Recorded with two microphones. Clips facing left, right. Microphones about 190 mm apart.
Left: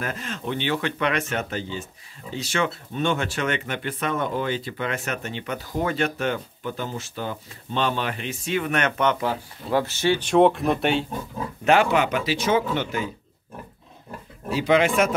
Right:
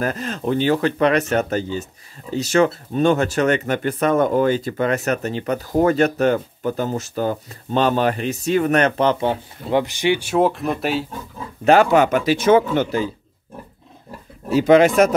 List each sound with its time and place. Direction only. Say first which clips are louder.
0.0 s speech: right 7 dB; 40° right (ahead or behind); by 11.1 s centre (ahead or behind)
11.6 s speech: right 6 dB; 40° right (ahead or behind)
14.5 s speech: right 7 dB; 45° right (ahead or behind)